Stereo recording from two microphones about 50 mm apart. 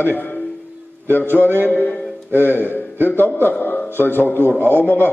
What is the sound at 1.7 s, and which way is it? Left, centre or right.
A man's voice, left.